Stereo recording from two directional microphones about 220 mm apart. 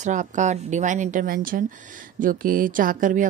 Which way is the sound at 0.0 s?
35° right (ahead or behind).